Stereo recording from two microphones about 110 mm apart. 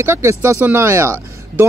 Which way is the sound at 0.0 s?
25° right (ahead or behind).